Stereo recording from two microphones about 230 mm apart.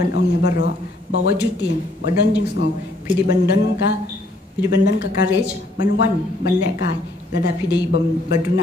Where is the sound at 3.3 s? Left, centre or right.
Left.